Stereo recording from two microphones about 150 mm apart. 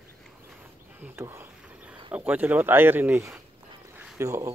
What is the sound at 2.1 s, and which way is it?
Speech, 10° right (ahead or behind).